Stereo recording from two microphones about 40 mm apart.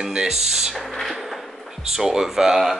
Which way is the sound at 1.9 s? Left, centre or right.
Centre.